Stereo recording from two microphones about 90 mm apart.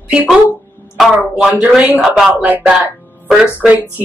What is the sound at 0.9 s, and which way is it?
Speech, centre (ahead or behind).